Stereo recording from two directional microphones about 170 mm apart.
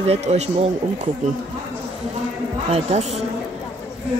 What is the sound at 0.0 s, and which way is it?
Speech, 40° right (ahead or behind).